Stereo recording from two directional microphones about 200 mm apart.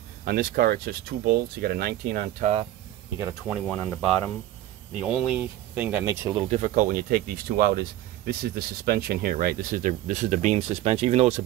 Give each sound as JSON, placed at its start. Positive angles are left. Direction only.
{"t": 0.2, "sound": "speech", "side_deg": -50}
{"t": 3.4, "sound": "speech", "side_deg": 0}
{"t": 6.3, "sound": "speech", "side_deg": -30}